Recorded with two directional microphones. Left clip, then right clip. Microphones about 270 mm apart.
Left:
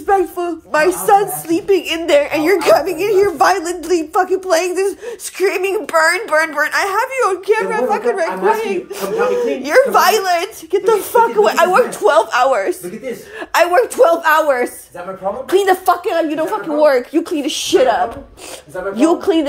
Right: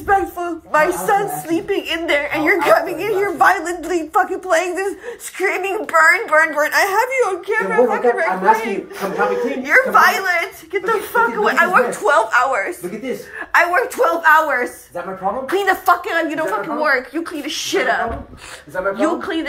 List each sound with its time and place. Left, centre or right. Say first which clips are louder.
0.0 s a woman's voice: left 2 dB; left
6.6 s a woman's voice: even; centre
7.2 s a woman's voice: left 3 dB; centre; by 19.4 s left